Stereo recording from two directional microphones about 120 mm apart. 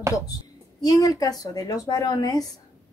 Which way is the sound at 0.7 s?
30° left (ahead or behind).